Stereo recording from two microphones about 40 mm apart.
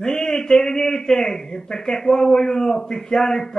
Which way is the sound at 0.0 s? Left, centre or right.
Centre.